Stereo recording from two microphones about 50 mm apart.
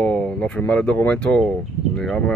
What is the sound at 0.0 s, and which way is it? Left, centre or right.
Speech, left.